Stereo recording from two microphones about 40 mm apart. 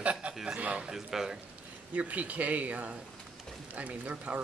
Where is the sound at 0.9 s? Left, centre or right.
Centre.